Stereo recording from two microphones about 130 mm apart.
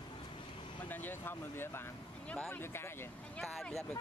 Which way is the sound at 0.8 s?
15° left (ahead or behind).